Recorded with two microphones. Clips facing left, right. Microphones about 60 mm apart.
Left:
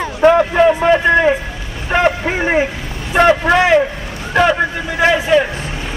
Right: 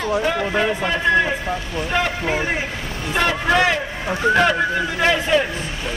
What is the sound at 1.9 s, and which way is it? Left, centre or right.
Vehicle, left.